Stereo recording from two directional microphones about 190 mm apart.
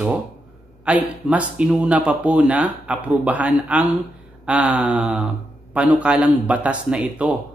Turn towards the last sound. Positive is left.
turn(degrees=-5)  # may be behind; listen again after turning